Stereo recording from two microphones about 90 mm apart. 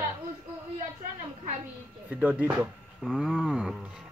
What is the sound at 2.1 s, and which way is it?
Speech, 15° right (ahead or behind).